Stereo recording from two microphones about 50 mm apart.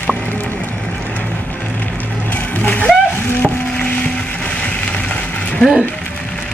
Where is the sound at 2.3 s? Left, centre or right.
Left.